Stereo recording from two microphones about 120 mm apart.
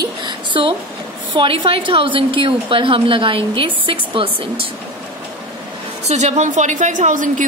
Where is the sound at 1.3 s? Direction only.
45° right (ahead or behind).